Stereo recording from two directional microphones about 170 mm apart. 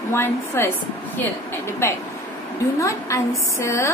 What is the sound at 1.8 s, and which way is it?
A woman's voice, 15° left (ahead or behind).